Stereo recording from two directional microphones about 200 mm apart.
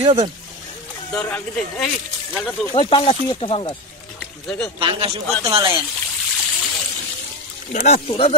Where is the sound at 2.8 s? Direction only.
25° left (ahead or behind).